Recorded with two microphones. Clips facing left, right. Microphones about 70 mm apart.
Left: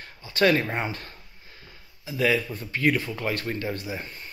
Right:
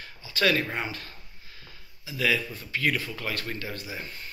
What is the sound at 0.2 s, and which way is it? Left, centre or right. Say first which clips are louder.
Speech: left 4 dB; left.